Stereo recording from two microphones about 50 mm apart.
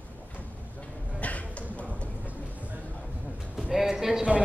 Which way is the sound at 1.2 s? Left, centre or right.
Left.